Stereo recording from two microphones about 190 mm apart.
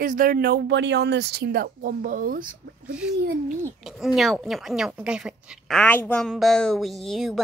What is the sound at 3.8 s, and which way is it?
Speech, centre (ahead or behind).